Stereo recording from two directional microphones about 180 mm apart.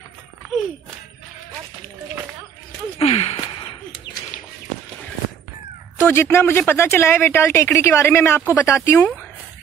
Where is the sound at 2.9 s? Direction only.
35° left (ahead or behind).